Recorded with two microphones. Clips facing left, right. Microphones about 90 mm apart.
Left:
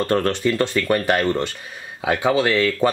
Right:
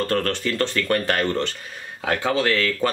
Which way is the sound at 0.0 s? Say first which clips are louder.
Left 4 dB; 20° left (ahead or behind).